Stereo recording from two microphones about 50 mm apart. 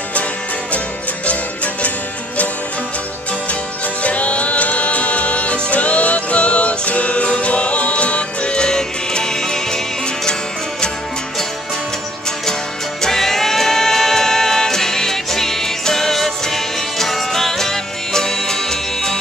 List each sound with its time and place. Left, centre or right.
1.2 s music: left
4.0 s music: left
13.0 s music: centre